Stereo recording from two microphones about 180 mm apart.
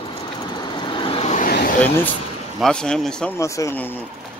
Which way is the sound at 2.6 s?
5° left (ahead or behind).